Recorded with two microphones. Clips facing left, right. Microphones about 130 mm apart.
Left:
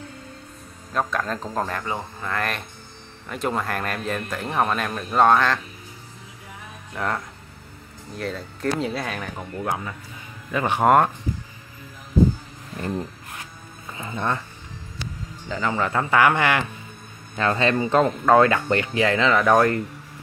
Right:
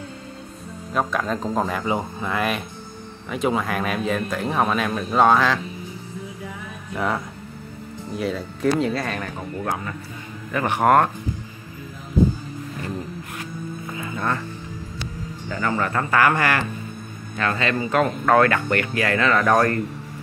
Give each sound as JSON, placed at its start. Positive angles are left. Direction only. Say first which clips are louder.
{"t": 0.9, "sound": "a man's voice", "louder": "right 2 dB", "side_deg": -5}
{"t": 7.0, "sound": "a man's voice", "louder": "right 2 dB", "side_deg": -5}
{"t": 13.9, "sound": "music", "louder": "even", "side_deg": 25}
{"t": 15.4, "sound": "speech", "louder": "even", "side_deg": 15}
{"t": 17.4, "sound": "speech", "louder": "left 2 dB", "side_deg": 25}